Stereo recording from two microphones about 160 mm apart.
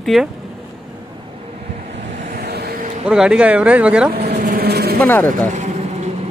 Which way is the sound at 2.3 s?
90° right.